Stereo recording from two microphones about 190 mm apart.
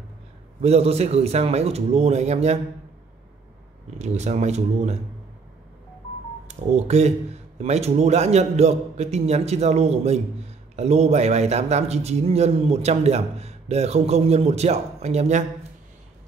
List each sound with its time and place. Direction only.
0.6 s a man's voice: 35° right (ahead or behind)
4.0 s a man's voice: 35° right (ahead or behind)
6.4 s a man's voice: 35° right (ahead or behind)